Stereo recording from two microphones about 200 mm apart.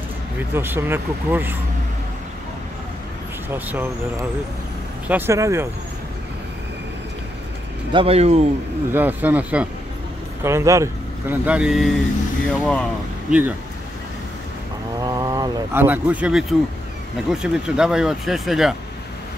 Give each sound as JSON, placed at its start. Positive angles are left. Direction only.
{"t": 0.4, "sound": "speech", "side_deg": -10}
{"t": 3.4, "sound": "speech", "side_deg": -10}
{"t": 7.9, "sound": "speech", "side_deg": -30}
{"t": 8.9, "sound": "speech", "side_deg": -10}
{"t": 13.3, "sound": "speech", "side_deg": -10}
{"t": 15.0, "sound": "vehicle", "side_deg": -20}
{"t": 17.3, "sound": "speech", "side_deg": -5}